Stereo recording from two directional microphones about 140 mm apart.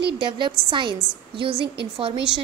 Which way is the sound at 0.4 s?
35° right (ahead or behind).